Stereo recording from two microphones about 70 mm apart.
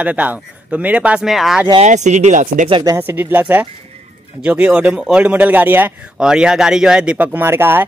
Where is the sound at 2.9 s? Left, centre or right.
Right.